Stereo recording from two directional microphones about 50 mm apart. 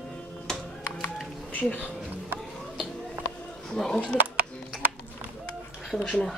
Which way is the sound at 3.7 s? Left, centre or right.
Centre.